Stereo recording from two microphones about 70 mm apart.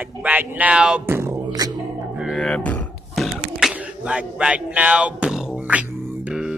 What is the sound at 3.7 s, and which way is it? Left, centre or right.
Speech, centre.